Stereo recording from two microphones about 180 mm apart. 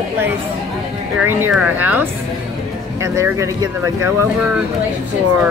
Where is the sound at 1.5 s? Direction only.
10° right (ahead or behind).